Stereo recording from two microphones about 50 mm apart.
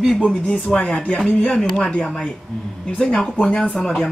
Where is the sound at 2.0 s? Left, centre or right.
Centre.